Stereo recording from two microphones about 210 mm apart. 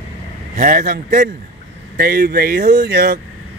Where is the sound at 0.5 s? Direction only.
40° right (ahead or behind).